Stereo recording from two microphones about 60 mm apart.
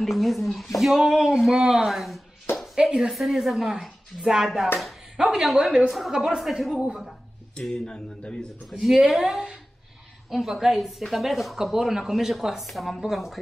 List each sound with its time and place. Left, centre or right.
0.0 s a woman's voice: centre
4.7 s a sound: centre
5.3 s a woman's voice: centre
6.8 s speech: centre
7.6 s speech: centre
8.9 s a woman's voice: centre